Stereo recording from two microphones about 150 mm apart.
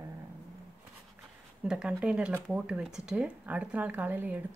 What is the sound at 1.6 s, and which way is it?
Speech, 5° right (ahead or behind).